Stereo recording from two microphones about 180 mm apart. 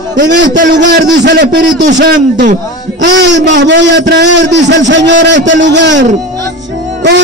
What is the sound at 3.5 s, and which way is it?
A man's voice, 80° right.